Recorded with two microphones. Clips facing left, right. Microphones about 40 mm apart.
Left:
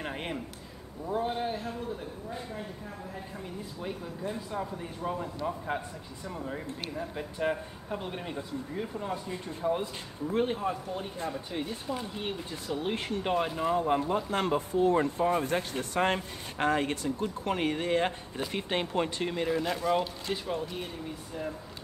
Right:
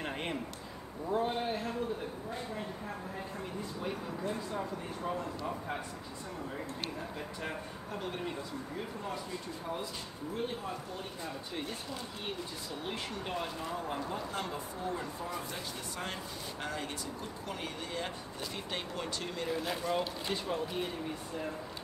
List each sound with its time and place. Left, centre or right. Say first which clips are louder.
0.0 s a sound: left 1 dB; centre
1.0 s a man's voice: left 2 dB; centre
3.8 s speech: left 2 dB; centre
7.3 s speech: left 8 dB; centre
9.0 s speech: left 4 dB; left
11.2 s speech: left 5 dB; centre
12.6 s speech: left 9 dB; left
19.4 s a man's voice: left 5 dB; centre